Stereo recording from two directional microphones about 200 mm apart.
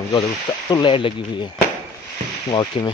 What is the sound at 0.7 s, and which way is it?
Speech, 25° left (ahead or behind).